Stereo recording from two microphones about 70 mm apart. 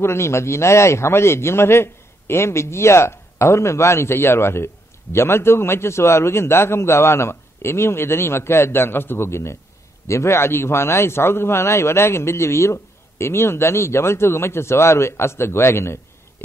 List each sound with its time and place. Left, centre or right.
0.0 s a man's voice: left